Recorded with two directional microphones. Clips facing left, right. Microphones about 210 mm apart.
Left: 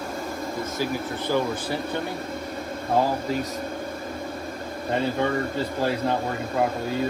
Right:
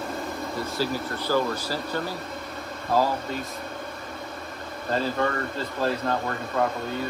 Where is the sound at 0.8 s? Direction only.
20° left (ahead or behind).